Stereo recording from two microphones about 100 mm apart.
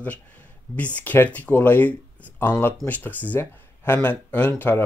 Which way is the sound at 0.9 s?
15° left (ahead or behind).